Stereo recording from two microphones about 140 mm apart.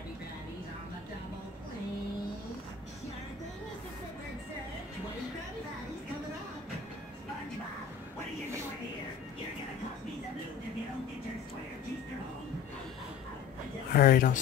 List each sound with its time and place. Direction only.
13.9 s speech: 85° left